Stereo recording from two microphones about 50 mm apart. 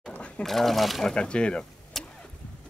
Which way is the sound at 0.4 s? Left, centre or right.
Centre.